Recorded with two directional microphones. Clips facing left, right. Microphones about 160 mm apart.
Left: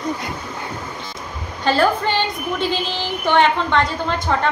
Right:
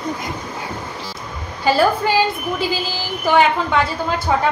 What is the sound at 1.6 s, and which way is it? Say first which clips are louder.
A woman's voice: right 1 dB; 10° right (ahead or behind).